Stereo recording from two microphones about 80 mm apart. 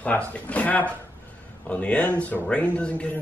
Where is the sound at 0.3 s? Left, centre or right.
Centre.